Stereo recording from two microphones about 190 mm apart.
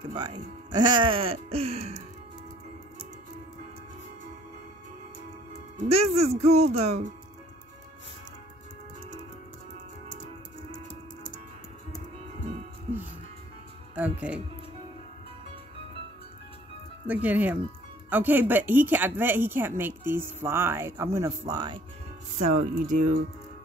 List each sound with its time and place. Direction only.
0.1 s speech: 25° right (ahead or behind)
5.9 s speech: 35° right (ahead or behind)
13.9 s speech: 10° right (ahead or behind)
17.1 s speech: 10° right (ahead or behind)
22.4 s speech: 40° right (ahead or behind)